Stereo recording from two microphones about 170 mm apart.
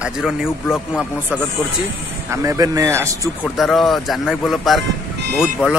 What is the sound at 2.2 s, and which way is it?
A man's voice, 20° right (ahead or behind).